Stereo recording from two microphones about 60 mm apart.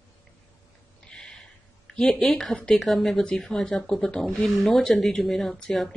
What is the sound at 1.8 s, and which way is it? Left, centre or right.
Speech, centre.